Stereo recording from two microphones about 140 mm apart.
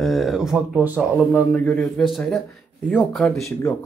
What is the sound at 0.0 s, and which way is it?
Speech, centre (ahead or behind).